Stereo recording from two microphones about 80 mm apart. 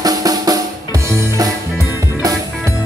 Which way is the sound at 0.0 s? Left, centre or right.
Right.